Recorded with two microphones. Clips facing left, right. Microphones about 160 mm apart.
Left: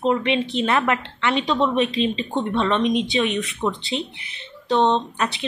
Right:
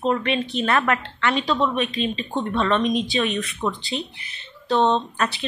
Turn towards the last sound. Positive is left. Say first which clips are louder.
# even
turn(degrees=20)  # may be behind; listen again after turning